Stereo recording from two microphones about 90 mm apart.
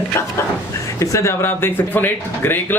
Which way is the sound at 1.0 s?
35° left (ahead or behind).